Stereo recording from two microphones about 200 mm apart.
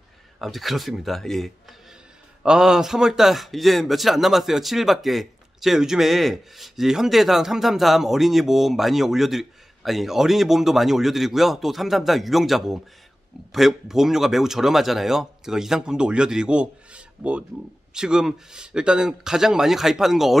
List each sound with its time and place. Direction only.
0.4 s speech: centre (ahead or behind)